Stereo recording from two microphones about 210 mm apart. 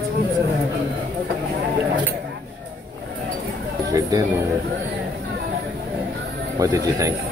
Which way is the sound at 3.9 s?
15° right (ahead or behind).